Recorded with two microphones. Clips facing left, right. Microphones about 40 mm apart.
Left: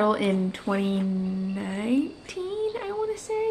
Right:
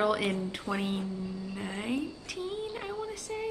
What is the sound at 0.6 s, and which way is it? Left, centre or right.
Speech, left.